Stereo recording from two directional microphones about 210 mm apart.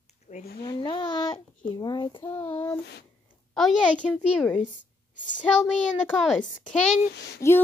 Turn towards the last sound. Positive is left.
turn(degrees=15)  # may be behind; listen again after turning